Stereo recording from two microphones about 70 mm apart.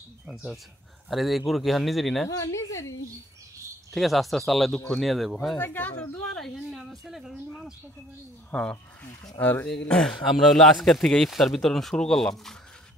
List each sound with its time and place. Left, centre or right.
1.1 s a man's voice: centre
2.2 s a woman's voice: left
3.9 s a man's voice: centre
5.6 s speech: left
6.2 s speech: centre
8.5 s a man's voice: centre